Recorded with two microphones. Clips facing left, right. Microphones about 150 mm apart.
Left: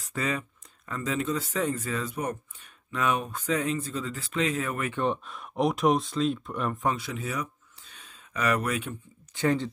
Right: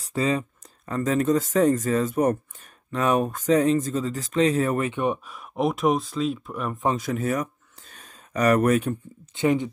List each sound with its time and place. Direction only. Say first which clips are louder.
0.0 s speech: right 7 dB; 30° right (ahead or behind)
4.9 s speech: right 3 dB; 10° right (ahead or behind)
7.0 s speech: right 8 dB; 45° right (ahead or behind)
7.9 s a sound: right 7 dB; 45° right (ahead or behind)
9.3 s speech: right 4 dB; 20° right (ahead or behind)